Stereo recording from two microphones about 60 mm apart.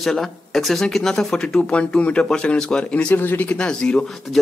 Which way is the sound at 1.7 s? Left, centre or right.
Centre.